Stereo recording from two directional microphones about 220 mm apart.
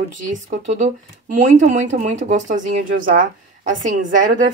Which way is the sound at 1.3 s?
35° right (ahead or behind).